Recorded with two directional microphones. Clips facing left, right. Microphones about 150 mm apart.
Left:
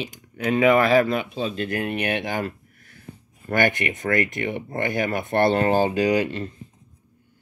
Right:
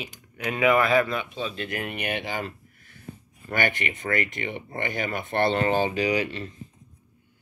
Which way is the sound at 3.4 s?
45° left (ahead or behind).